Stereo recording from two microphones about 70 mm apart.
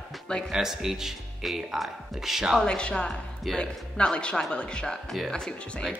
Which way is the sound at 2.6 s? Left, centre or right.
Centre.